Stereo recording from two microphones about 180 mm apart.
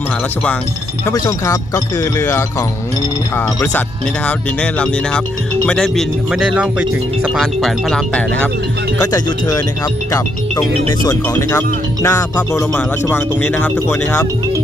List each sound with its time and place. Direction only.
1.0 s speech: 20° left (ahead or behind)
9.0 s speech: 20° left (ahead or behind)
11.1 s speech: 15° left (ahead or behind)